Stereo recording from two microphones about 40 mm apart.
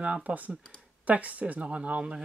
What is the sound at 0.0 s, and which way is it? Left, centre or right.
Speech, right.